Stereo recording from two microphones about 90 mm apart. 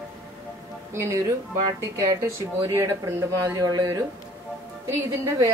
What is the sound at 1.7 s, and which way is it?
Speech, 35° right (ahead or behind).